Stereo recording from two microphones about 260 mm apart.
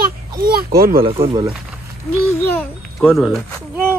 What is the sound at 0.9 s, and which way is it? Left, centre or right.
Speech, right.